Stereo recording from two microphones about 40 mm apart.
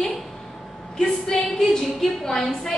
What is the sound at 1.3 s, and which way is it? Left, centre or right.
A woman's voice, centre.